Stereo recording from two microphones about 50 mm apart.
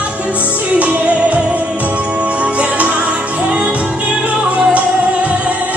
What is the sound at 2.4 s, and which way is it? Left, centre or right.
Music, right.